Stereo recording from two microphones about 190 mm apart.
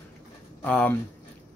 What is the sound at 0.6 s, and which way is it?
Speech, 10° left (ahead or behind).